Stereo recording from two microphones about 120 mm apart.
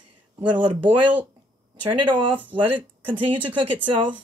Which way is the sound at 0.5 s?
45° right (ahead or behind).